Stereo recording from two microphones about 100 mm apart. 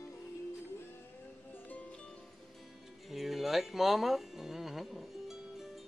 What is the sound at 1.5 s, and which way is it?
Music, 15° left (ahead or behind).